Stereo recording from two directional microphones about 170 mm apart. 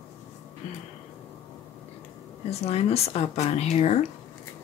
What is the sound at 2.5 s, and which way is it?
Speech, 40° left (ahead or behind).